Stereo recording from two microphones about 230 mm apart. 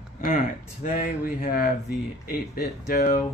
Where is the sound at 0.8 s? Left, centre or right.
Left.